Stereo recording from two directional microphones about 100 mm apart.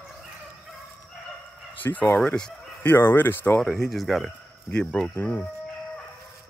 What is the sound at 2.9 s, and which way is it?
Speech, 20° left (ahead or behind).